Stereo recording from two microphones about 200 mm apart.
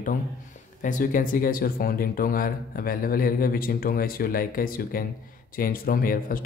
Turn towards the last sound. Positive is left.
turn(degrees=45)  # may be behind; listen again after turning